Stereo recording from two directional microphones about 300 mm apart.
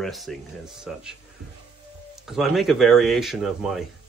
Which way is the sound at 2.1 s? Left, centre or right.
Centre.